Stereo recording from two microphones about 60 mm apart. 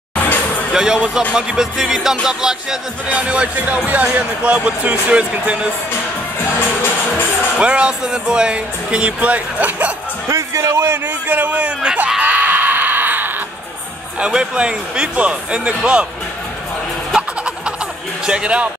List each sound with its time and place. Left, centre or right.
0.2 s music: left
0.7 s speech: centre
3.1 s speech: right
7.5 s speech: centre
10.2 s speech: right
11.2 s speech: right
12.2 s a sound: right
14.2 s speech: centre
18.2 s speech: centre